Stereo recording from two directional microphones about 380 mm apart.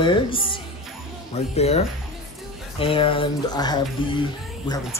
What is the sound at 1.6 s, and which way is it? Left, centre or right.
Speech, centre.